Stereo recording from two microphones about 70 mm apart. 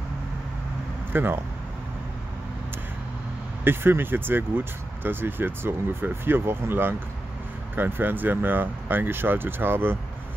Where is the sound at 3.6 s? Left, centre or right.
Right.